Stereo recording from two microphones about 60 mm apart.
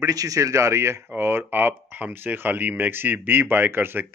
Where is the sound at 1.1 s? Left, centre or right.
Right.